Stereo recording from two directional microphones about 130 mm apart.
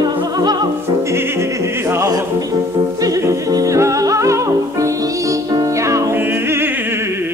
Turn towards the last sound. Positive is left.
turn(degrees=-20)  # may be behind; listen again after turning